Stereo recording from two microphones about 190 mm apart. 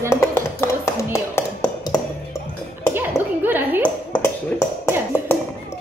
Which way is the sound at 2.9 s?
10° right (ahead or behind).